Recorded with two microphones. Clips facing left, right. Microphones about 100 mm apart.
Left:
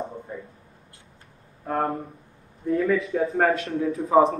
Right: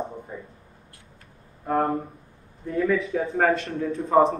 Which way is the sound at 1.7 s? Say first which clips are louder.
Right 2 dB; 5° right (ahead or behind).